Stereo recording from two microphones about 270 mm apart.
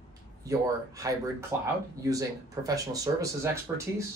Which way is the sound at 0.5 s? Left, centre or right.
Centre.